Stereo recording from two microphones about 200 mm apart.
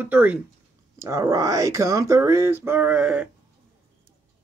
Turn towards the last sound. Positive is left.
turn(degrees=-5)  # may be behind; listen again after turning